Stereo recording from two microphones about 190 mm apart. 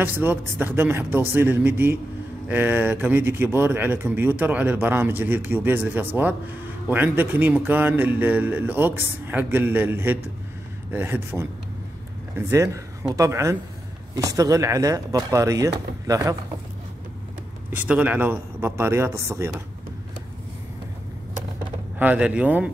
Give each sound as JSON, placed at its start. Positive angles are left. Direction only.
{"t": 0.0, "sound": "a man's voice", "side_deg": -10}
{"t": 17.6, "sound": "a man's voice", "side_deg": -10}
{"t": 21.9, "sound": "a man's voice", "side_deg": -5}